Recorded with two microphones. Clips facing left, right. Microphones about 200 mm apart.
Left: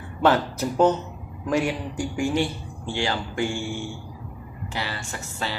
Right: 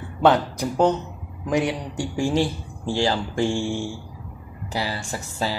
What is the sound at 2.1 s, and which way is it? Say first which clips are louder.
Speech: right 3 dB; 35° right (ahead or behind).